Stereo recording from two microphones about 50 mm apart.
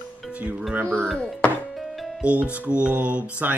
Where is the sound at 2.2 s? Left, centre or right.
Right.